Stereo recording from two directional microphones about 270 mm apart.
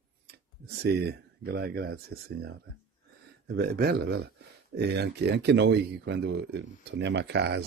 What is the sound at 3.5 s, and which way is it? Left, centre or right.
Speech, right.